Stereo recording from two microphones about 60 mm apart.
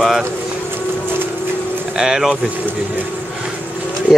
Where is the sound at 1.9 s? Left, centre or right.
Centre.